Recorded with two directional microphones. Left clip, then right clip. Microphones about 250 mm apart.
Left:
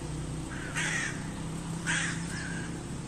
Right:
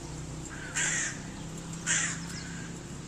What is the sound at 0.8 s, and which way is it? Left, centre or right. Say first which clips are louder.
Crow: right 1 dB; right.